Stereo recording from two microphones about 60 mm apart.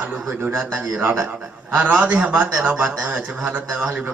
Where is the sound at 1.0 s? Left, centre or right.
Right.